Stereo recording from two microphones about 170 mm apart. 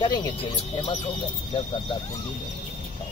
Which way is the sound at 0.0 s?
25° left (ahead or behind).